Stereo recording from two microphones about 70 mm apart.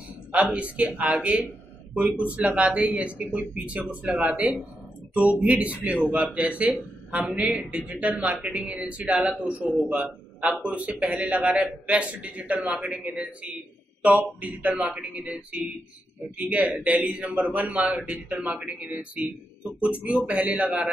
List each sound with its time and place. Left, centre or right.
0.3 s speech: centre